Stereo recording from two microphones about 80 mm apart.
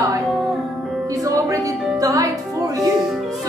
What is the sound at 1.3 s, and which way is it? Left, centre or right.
Music, right.